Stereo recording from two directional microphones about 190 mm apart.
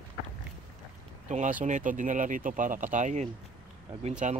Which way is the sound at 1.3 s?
40° right (ahead or behind).